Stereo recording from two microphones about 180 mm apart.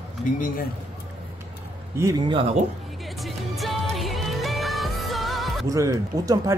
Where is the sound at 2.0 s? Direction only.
20° right (ahead or behind).